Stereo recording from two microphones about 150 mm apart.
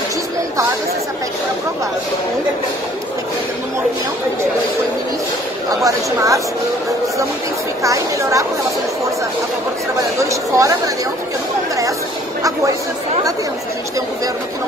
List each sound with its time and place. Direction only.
5.8 s speech: 20° right (ahead or behind)
7.8 s speech: 20° right (ahead or behind)
9.9 s speech: 20° right (ahead or behind)